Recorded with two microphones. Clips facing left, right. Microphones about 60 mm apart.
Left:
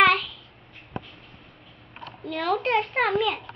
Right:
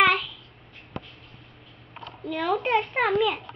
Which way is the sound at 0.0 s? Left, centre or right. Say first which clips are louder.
Left 2 dB; centre.